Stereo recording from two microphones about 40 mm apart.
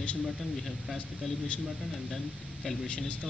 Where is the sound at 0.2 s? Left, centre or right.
Centre.